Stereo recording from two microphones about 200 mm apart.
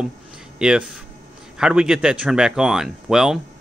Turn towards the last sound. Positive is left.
turn(degrees=-5)  # may be behind; listen again after turning